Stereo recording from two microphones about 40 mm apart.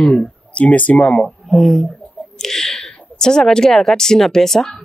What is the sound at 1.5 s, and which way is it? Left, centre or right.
A woman's voice, centre.